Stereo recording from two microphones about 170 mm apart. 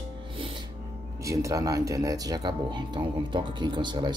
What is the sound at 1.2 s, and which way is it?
Speech, 20° right (ahead or behind).